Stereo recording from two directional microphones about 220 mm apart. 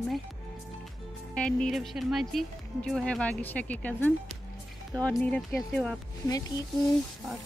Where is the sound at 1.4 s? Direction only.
5° left (ahead or behind).